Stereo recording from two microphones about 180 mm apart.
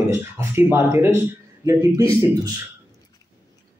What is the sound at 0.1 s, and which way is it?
Speech, 15° right (ahead or behind).